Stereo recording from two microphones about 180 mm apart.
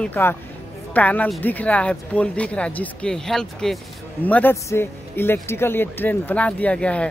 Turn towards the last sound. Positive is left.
turn(degrees=5)  # may be behind; listen again after turning